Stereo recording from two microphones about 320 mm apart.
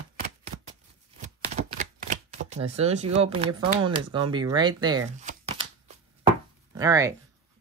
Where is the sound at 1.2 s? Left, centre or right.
Right.